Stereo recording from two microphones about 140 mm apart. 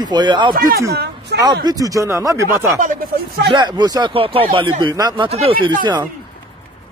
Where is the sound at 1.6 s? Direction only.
25° right (ahead or behind).